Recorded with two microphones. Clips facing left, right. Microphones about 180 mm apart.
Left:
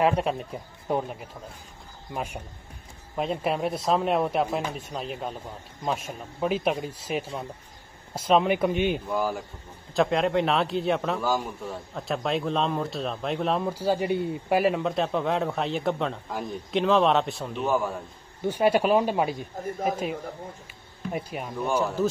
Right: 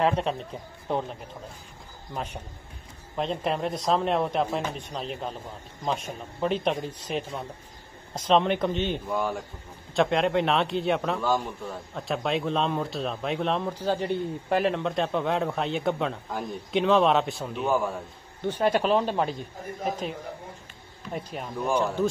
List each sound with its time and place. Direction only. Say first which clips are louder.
0.0 s a man's voice: left 1 dB; 10° left (ahead or behind)
2.1 s a man's voice: left 2 dB; 10° left (ahead or behind)
21.1 s a man's voice: left 1 dB; 10° left (ahead or behind)